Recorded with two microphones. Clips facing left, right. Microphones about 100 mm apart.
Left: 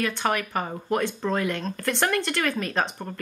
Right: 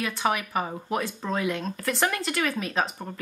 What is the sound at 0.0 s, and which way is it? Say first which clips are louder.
Speech: left 1 dB; 5° right (ahead or behind).